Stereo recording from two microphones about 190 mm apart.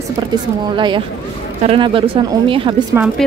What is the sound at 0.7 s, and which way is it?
A woman's voice, 25° right (ahead or behind).